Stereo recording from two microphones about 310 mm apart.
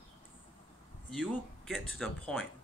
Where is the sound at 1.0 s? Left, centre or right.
Centre.